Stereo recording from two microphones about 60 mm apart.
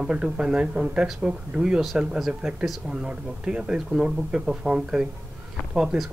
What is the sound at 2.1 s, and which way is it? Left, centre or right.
Speech, centre.